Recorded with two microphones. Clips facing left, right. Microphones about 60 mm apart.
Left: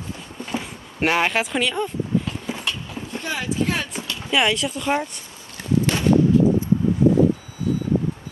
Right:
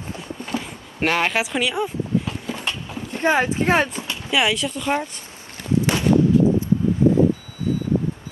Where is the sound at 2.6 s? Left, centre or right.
Right.